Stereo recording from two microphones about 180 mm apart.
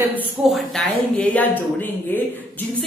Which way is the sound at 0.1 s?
5° right (ahead or behind).